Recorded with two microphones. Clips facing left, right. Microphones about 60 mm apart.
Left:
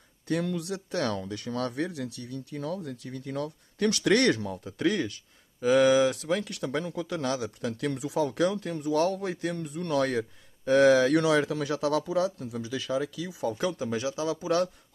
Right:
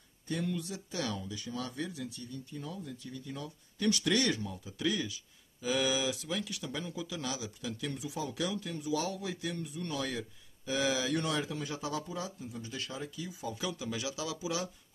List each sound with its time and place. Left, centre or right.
0.3 s speech: left
13.5 s a man's voice: left